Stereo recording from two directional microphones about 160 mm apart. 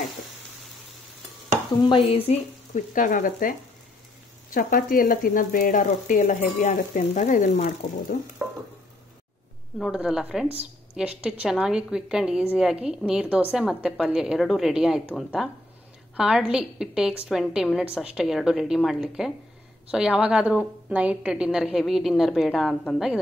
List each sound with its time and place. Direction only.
1.9 s speech: 35° left (ahead or behind)
2.9 s speech: 55° left (ahead or behind)
9.8 s a woman's voice: 5° right (ahead or behind)